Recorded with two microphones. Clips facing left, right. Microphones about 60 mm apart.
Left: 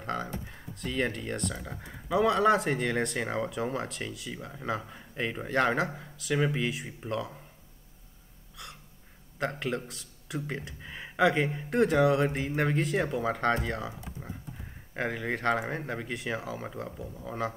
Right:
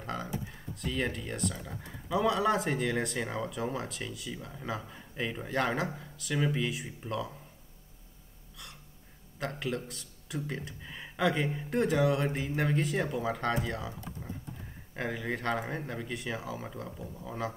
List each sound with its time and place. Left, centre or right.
0.0 s a sound: centre
0.5 s speech: centre
1.5 s a man's voice: centre
2.1 s speech: centre
4.3 s a man's voice: centre
5.5 s speech: centre
6.3 s a man's voice: centre
6.6 s speech: centre
9.6 s a man's voice: centre
14.2 s a sound: left
15.0 s speech: centre